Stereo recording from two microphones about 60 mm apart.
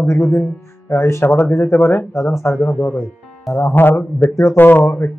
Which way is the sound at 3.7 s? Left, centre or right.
Left.